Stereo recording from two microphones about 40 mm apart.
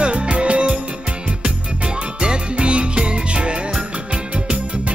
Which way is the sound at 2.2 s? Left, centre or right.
Right.